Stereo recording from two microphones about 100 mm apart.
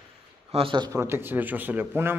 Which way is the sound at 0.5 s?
90° right.